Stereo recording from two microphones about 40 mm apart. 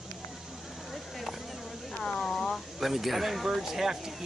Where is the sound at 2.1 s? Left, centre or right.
Centre.